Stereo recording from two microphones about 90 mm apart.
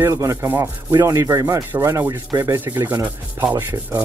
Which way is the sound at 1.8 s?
25° right (ahead or behind).